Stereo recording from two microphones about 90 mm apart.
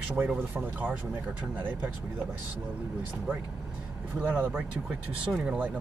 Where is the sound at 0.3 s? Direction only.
20° right (ahead or behind).